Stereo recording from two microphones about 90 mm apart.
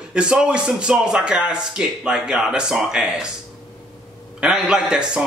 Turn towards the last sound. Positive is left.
turn(degrees=-10)  # may be behind; listen again after turning